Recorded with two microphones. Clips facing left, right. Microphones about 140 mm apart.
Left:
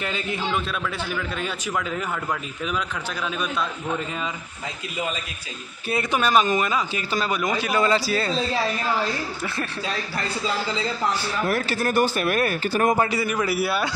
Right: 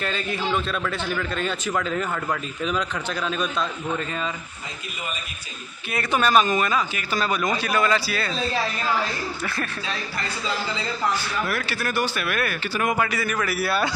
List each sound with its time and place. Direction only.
0.0 s a man's voice: 15° left (ahead or behind)
0.5 s a man's voice: 5° left (ahead or behind)
6.1 s a man's voice: 15° left (ahead or behind); by 8.4 s 35° left (ahead or behind)
11.4 s a man's voice: 40° left (ahead or behind); by 13.7 s 20° left (ahead or behind)